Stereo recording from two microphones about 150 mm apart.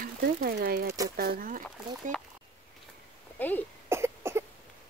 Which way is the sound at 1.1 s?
75° right (ahead or behind).